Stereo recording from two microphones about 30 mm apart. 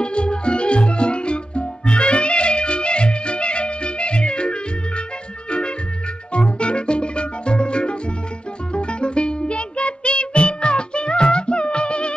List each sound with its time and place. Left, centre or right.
0.0 s music: left
6.3 s music: left